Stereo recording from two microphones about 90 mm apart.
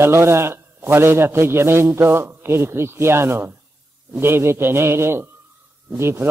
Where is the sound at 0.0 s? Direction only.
30° right (ahead or behind).